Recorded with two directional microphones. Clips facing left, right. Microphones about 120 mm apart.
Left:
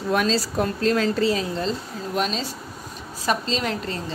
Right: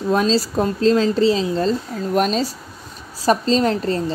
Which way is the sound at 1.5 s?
45° right (ahead or behind).